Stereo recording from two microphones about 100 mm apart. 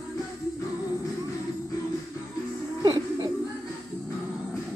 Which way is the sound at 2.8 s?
40° right (ahead or behind).